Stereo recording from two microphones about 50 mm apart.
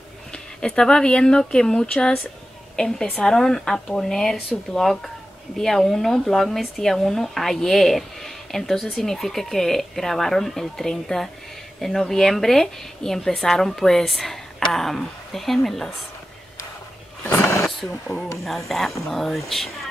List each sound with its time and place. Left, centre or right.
0.3 s speech: centre
17.3 s vehicle: left
18.4 s speech: centre